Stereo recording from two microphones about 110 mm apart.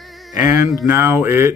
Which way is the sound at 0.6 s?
25° right (ahead or behind).